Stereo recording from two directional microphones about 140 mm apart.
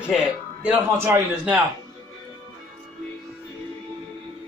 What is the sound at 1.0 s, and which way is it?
Speech, 15° right (ahead or behind).